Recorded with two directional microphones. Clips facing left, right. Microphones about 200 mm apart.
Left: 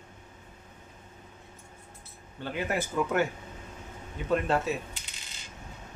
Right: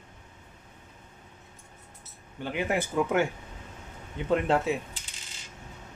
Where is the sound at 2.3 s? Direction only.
15° right (ahead or behind).